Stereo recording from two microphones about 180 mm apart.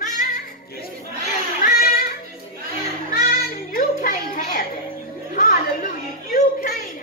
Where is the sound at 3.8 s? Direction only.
50° left (ahead or behind).